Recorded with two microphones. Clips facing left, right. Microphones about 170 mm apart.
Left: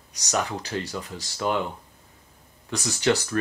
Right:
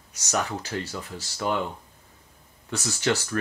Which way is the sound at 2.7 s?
15° left (ahead or behind).